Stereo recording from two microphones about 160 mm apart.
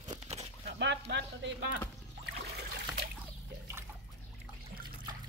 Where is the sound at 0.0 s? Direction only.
45° right (ahead or behind).